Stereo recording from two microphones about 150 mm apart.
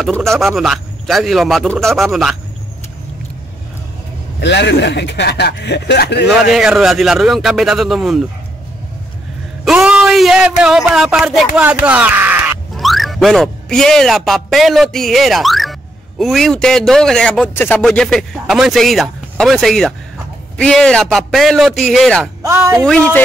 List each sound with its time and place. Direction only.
0.0 s a man's voice: 5° left (ahead or behind)
5.2 s speech: 90° left
6.5 s a man's voice: 5° right (ahead or behind)
9.7 s speech: 5° right (ahead or behind)
12.7 s a man's voice: centre (ahead or behind)
22.4 s speech: 20° right (ahead or behind)
22.8 s speech: 10° left (ahead or behind)